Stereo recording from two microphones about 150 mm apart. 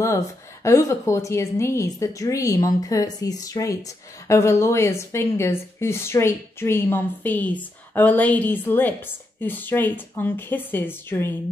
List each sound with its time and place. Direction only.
0.7 s a woman's voice: 20° left (ahead or behind)